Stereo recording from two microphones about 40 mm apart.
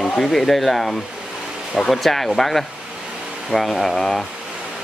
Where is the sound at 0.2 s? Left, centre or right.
Centre.